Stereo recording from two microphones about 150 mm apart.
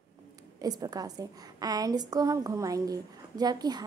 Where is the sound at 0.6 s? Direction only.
25° right (ahead or behind).